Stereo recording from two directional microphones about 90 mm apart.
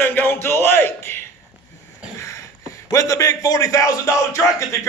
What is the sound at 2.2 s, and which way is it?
A man's voice, 35° left (ahead or behind).